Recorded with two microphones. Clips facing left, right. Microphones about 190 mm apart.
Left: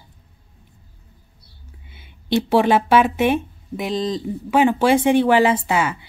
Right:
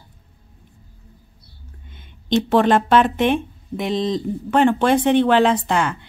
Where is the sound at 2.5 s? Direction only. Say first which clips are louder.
Even; 10° left (ahead or behind).